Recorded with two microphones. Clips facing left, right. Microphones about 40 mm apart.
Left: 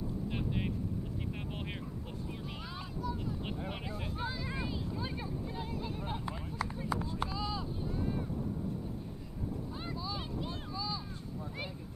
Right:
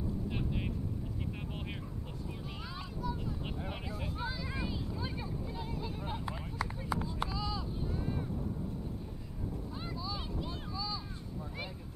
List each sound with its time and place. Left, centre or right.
0.5 s vehicle: centre
3.0 s vehicle: centre
4.2 s a sound: centre
7.3 s vehicle: centre
7.8 s vehicle: centre
9.8 s vehicle: centre